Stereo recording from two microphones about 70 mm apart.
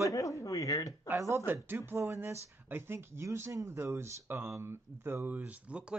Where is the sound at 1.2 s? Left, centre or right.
Right.